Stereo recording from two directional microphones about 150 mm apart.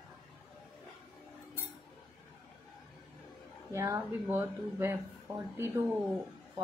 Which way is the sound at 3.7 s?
20° right (ahead or behind).